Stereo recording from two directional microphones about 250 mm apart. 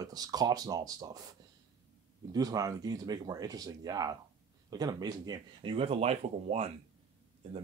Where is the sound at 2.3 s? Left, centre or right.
Centre.